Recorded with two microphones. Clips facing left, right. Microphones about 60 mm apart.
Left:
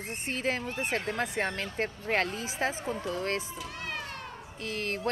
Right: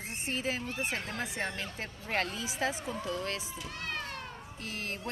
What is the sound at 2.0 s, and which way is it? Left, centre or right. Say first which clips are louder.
Speech: left 2 dB; left.